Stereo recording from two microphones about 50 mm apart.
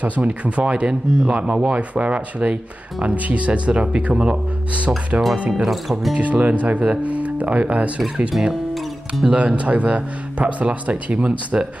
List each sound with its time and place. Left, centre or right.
0.0 s speech: right
5.7 s speech: centre
6.1 s speech: right